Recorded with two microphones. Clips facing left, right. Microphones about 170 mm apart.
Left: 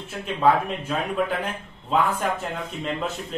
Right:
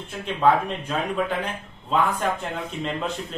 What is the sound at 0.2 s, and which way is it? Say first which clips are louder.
A man's voice: even; 5° left (ahead or behind).